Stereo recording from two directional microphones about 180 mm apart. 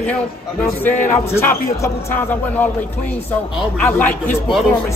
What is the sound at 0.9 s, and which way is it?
Speech, 45° left (ahead or behind).